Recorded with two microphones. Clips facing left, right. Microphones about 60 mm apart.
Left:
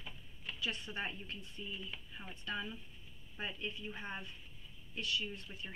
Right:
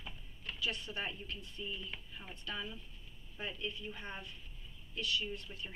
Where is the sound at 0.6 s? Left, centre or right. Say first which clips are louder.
Right 1 dB; left.